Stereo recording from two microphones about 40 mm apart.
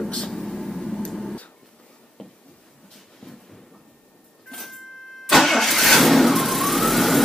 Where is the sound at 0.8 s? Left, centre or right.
Centre.